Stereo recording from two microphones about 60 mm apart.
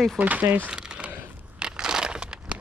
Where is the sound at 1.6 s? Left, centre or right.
Centre.